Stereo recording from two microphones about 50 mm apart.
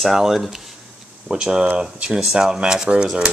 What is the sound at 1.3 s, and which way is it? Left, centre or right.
Speech, centre.